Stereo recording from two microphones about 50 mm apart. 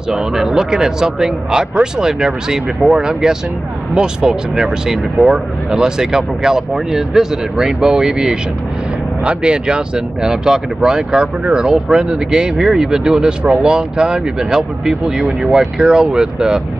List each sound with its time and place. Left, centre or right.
0.1 s speech: centre